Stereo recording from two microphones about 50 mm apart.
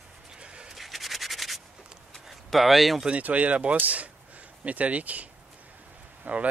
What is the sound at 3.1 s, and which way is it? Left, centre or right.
A man's voice, right.